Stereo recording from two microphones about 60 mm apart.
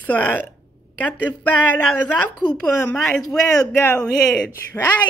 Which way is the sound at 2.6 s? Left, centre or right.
Centre.